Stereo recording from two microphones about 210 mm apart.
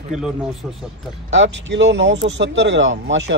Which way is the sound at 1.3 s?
60° right (ahead or behind).